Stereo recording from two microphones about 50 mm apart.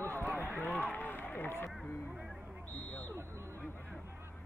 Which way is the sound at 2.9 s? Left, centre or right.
Left.